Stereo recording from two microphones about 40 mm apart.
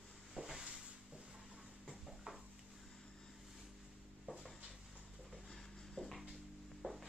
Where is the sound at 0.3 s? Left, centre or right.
Centre.